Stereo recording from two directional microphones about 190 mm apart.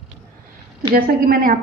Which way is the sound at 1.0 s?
50° right (ahead or behind).